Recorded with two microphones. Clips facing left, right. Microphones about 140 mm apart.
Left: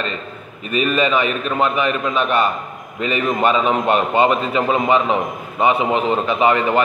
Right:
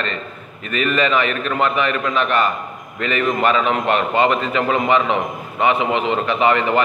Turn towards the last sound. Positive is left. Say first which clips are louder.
# left 1 dB
turn(degrees=20)  # may be behind; listen again after turning